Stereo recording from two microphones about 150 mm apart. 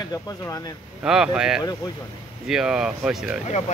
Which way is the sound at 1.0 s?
5° right (ahead or behind).